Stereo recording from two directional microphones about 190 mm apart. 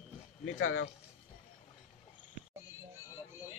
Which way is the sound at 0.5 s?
90° left.